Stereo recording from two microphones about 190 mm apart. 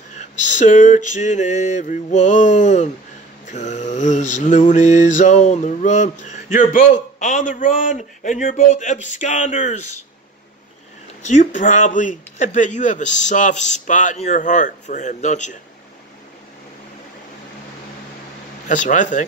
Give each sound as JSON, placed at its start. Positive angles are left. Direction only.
{"t": 0.1, "sound": "mantra", "side_deg": 40}
{"t": 11.2, "sound": "mantra", "side_deg": 40}
{"t": 18.7, "sound": "mantra", "side_deg": 40}